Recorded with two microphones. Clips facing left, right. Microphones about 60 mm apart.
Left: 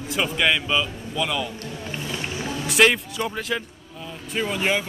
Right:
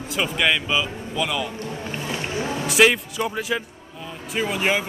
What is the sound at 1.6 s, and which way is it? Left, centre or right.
Wild animals, right.